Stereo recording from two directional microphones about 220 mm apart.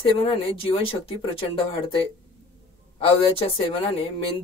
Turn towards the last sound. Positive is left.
turn(degrees=25)  # may be behind; listen again after turning